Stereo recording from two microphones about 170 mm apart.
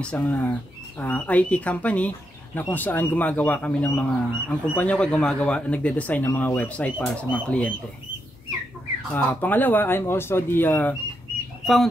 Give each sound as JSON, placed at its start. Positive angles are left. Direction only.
{"t": 0.0, "sound": "speech", "side_deg": 5}
{"t": 9.1, "sound": "speech", "side_deg": 15}
{"t": 11.6, "sound": "speech", "side_deg": 0}